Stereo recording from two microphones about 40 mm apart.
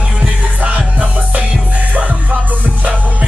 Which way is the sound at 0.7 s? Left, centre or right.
Right.